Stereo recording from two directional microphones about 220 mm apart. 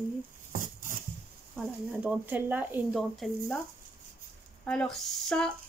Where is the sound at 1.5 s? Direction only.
5° right (ahead or behind).